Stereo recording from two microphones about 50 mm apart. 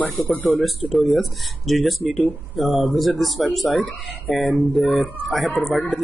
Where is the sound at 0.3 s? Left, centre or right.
Left.